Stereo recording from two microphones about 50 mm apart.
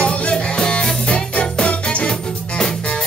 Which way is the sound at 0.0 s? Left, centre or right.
Centre.